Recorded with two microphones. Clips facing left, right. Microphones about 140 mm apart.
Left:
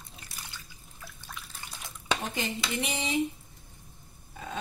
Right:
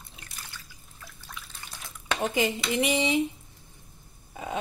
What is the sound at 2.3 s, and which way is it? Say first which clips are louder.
Speech: right 6 dB; 90° right.